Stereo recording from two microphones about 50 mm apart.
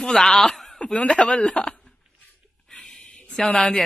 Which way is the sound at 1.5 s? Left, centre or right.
Left.